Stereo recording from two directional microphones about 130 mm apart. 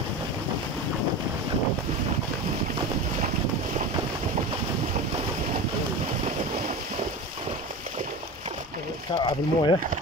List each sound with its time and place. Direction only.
9.2 s speech: 35° left (ahead or behind)